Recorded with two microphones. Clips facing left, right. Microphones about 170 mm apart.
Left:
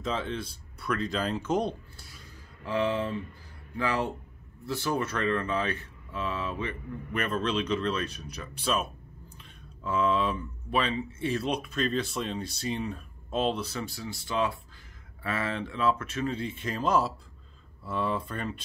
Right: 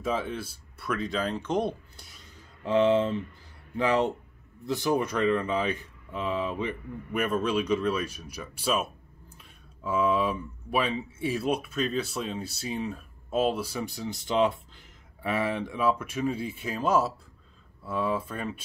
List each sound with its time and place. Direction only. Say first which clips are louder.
0.0 s speech: right 2 dB; 10° right (ahead or behind)
2.0 s a sound: left 1 dB; 20° right (ahead or behind)
3.7 s speech: right 5 dB; 20° right (ahead or behind); by 18.6 s 5° right (ahead or behind)